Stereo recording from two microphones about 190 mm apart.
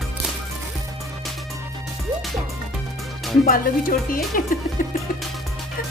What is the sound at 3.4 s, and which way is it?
Speech, 50° left (ahead or behind).